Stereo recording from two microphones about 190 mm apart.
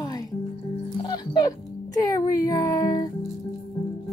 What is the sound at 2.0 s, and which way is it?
Speech, 20° left (ahead or behind).